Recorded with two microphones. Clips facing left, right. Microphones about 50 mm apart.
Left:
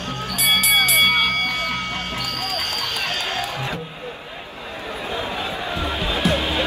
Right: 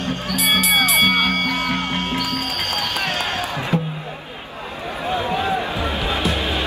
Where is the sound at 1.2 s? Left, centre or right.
Right.